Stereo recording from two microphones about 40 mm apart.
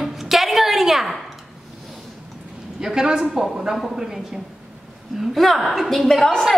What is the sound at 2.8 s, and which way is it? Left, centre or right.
Speech, centre.